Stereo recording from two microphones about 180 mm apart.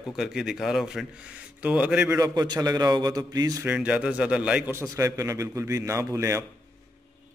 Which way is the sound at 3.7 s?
5° right (ahead or behind).